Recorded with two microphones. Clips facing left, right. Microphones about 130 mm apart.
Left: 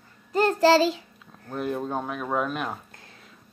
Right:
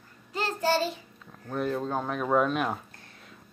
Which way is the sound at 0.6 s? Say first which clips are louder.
Left 7 dB; 90° left.